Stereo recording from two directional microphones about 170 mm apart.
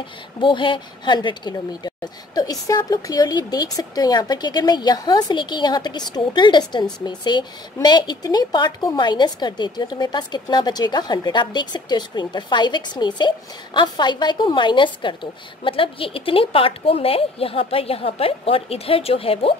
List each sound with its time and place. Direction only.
0.4 s speech: 30° left (ahead or behind)